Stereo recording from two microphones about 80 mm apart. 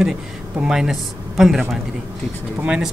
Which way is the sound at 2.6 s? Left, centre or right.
Centre.